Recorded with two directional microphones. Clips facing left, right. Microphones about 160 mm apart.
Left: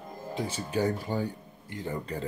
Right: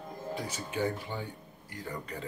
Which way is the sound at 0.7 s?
40° left (ahead or behind).